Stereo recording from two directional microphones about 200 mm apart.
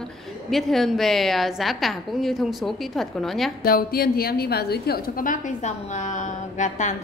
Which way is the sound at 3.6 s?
50° left (ahead or behind).